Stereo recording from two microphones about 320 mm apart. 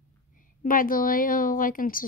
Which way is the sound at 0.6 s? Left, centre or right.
Left.